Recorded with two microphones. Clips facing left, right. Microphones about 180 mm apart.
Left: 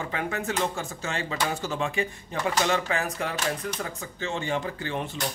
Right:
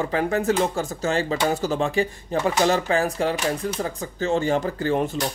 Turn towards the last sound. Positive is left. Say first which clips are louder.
# right 9 dB
turn(degrees=-40)  # may be behind; listen again after turning